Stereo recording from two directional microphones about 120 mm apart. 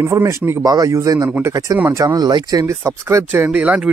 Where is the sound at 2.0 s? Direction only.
35° right (ahead or behind); by 3.9 s 10° right (ahead or behind).